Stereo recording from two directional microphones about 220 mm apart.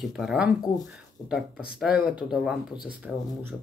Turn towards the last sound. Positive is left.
turn(degrees=0)  # may be behind; listen again after turning